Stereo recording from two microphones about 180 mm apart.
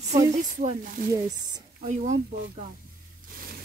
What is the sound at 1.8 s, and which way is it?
Speech, 40° right (ahead or behind).